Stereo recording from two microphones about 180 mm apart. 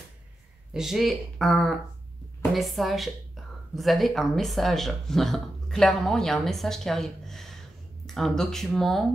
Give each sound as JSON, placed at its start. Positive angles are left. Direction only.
{"t": 0.7, "sound": "speech", "side_deg": 0}